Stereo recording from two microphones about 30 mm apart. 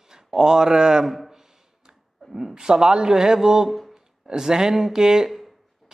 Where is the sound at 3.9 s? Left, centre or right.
Right.